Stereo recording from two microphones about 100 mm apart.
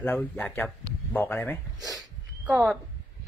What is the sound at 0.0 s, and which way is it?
Speech, 20° left (ahead or behind).